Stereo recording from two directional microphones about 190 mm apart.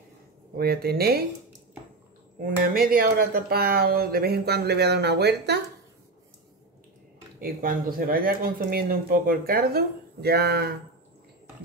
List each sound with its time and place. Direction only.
0.6 s speech: 55° right (ahead or behind)
2.7 s speech: 50° right (ahead or behind)
7.3 s speech: 45° right (ahead or behind)